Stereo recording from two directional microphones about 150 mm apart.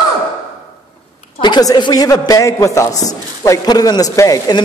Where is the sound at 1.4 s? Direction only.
25° left (ahead or behind).